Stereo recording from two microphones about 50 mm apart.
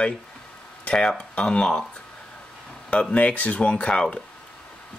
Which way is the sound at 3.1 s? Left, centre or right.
Left.